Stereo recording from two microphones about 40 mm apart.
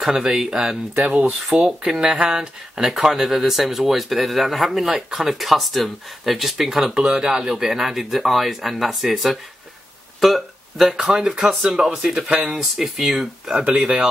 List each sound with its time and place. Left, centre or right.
0.0 s speech: centre
1.0 s speech: right
1.5 s speech: centre
2.9 s speech: centre
13.7 s speech: right